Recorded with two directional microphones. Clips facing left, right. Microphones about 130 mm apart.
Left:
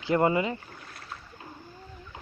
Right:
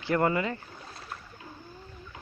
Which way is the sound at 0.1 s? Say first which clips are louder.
Left 2 dB; 20° left (ahead or behind).